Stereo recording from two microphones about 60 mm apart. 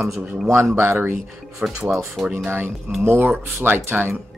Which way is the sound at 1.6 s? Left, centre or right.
Right.